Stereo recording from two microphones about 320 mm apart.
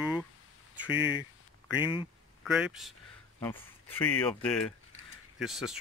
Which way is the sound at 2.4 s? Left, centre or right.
Centre.